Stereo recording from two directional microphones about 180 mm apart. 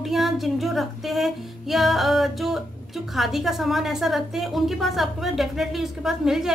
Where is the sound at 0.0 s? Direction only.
Centre (ahead or behind).